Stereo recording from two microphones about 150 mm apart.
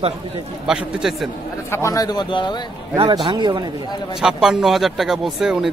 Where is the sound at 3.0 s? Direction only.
35° right (ahead or behind).